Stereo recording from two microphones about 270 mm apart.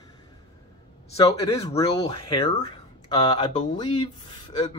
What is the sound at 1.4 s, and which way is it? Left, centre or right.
Speech, centre.